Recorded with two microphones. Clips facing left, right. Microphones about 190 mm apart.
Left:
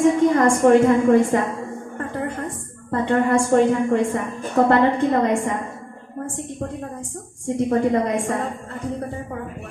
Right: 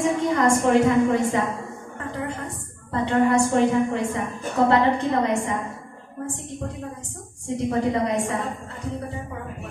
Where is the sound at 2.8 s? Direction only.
50° left (ahead or behind).